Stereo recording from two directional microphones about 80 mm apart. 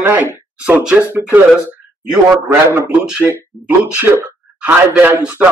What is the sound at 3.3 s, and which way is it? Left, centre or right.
Speech, right.